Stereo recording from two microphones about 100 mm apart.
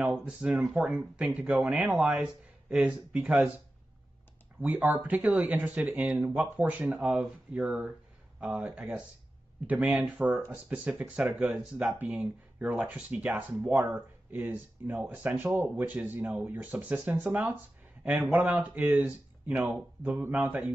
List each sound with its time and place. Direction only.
0.0 s speech: 10° right (ahead or behind)